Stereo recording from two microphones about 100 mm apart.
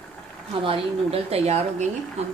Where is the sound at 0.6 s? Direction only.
70° right (ahead or behind); by 1.5 s 90° right.